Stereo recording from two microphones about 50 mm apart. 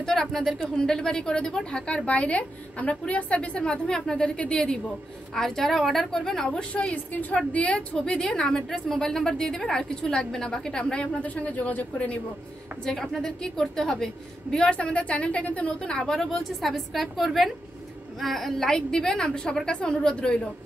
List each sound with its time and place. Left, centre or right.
0.0 s a woman's voice: centre
5.3 s speech: centre
6.7 s a woman's voice: left
11.2 s a woman's voice: left
12.8 s speech: centre
14.6 s a woman's voice: left
16.1 s a woman's voice: centre